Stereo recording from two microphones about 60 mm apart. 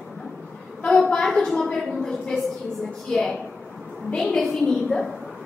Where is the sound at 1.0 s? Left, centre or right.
Centre.